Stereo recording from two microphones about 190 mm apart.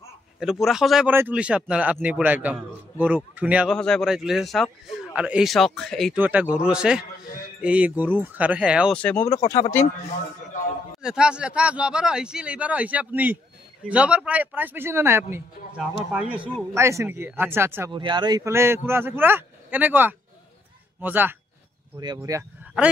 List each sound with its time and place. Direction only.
0.4 s speech: centre (ahead or behind)
3.7 s speech: 5° left (ahead or behind)
6.1 s speech: 10° right (ahead or behind)
8.9 s speech: 5° left (ahead or behind)
11.0 s speech: 5° right (ahead or behind)
17.9 s speech: 25° right (ahead or behind)